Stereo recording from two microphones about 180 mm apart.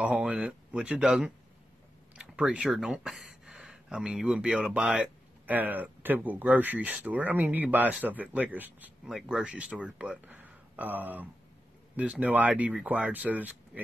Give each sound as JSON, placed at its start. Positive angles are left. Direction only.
{"t": 0.0, "sound": "speech", "side_deg": -5}